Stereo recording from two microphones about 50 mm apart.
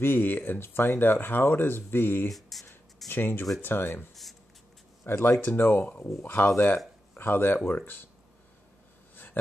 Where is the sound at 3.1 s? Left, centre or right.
Left.